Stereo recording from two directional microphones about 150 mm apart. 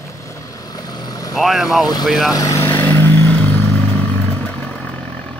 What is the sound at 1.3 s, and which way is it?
Speech, centre (ahead or behind).